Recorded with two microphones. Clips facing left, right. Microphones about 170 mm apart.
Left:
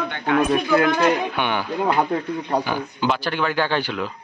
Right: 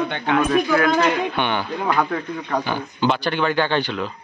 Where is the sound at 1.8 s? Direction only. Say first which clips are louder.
Left 3 dB; 25° left (ahead or behind).